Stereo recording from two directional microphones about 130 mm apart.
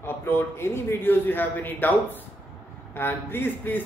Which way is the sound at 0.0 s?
15° left (ahead or behind).